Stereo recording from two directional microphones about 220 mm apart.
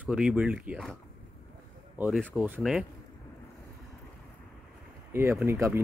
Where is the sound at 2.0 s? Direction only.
Centre (ahead or behind).